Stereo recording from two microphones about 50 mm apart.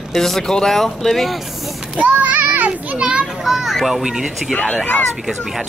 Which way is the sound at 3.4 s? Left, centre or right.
Centre.